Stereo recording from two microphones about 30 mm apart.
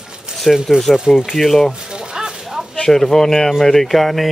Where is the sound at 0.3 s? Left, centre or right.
Right.